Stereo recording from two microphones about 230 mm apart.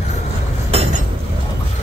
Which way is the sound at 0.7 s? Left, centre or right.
Right.